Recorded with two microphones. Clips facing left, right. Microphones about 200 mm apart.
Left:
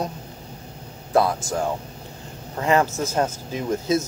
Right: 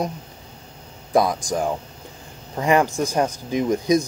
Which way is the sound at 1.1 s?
15° right (ahead or behind).